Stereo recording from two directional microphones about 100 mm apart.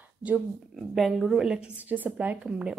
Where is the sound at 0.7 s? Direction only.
Centre (ahead or behind).